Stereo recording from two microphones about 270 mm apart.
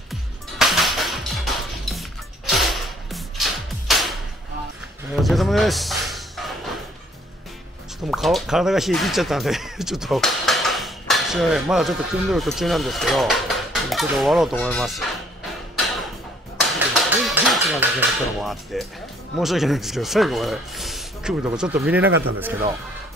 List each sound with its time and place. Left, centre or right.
0.1 s music: centre
5.2 s music: centre
8.1 s speech: centre
16.6 s a sound: centre
19.3 s speech: centre
22.1 s a man's voice: right
22.4 s speech: centre